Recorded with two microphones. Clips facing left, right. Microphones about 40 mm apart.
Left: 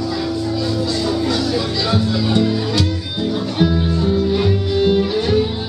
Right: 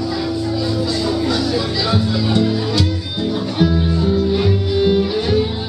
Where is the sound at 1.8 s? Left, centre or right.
Centre.